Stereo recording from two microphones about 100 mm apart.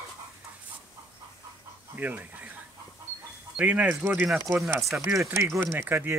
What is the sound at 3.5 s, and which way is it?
Speech, 15° right (ahead or behind).